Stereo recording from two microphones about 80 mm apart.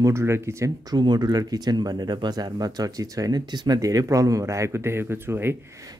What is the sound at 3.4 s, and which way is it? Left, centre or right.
Speech, right.